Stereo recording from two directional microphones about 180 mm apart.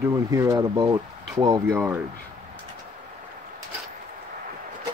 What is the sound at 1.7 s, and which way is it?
Speech, 10° right (ahead or behind).